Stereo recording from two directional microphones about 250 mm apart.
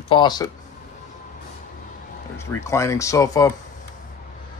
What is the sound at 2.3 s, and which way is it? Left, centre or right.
Speech, centre.